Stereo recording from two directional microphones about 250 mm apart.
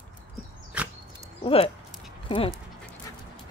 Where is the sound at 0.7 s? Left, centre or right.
Centre.